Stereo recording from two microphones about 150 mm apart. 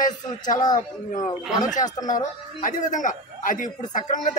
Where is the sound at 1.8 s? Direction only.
25° left (ahead or behind).